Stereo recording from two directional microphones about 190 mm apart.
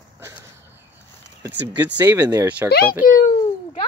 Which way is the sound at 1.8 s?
10° right (ahead or behind).